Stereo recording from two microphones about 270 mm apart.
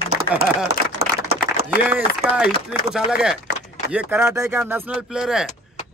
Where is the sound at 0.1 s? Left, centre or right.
Left.